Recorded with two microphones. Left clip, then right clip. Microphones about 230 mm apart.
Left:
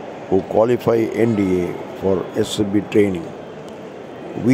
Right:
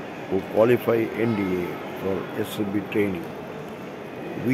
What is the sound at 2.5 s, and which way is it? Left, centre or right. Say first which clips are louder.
Speech: left 9 dB; left.